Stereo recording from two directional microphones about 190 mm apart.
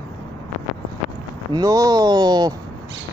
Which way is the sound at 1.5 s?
20° right (ahead or behind).